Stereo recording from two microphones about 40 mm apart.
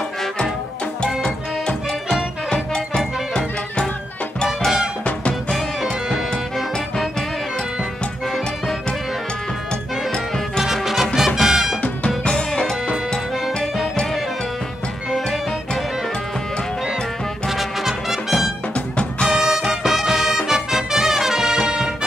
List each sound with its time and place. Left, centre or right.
2.5 s music: left
5.8 s music: centre
10.6 s music: centre
12.3 s music: centre
17.5 s music: centre